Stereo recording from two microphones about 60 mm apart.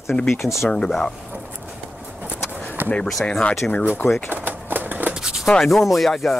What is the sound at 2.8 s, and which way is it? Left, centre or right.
Speech, right.